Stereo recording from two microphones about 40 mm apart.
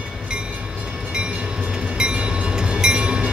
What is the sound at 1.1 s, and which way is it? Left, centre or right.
Train, right.